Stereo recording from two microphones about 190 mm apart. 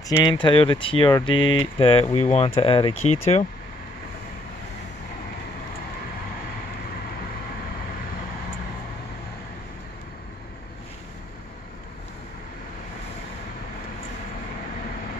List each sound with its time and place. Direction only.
0.1 s speech: 25° left (ahead or behind)